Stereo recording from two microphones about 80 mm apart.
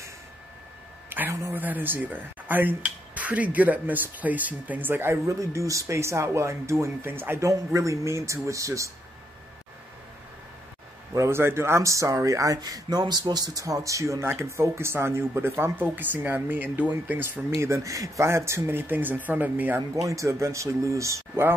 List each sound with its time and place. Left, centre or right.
1.5 s speech: right
5.1 s speech: right
7.4 s speech: right
11.1 s speech: right
20.0 s speech: right